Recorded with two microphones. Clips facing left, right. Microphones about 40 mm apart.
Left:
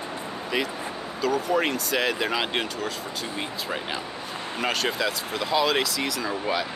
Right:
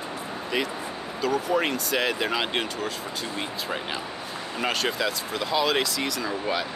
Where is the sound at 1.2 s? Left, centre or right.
Centre.